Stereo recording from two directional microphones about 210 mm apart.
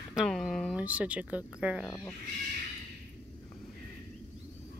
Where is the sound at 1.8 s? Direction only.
10° left (ahead or behind).